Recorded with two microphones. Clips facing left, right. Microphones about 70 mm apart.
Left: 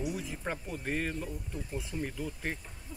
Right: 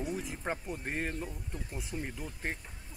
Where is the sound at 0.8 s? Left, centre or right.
Right.